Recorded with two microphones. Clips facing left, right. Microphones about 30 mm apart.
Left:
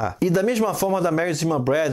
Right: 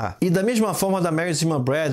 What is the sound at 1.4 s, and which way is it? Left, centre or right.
Speech, right.